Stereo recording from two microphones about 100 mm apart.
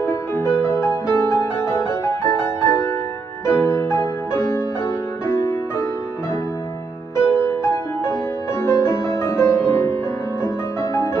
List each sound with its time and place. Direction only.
0.0 s music: 25° left (ahead or behind)
7.2 s music: 25° left (ahead or behind)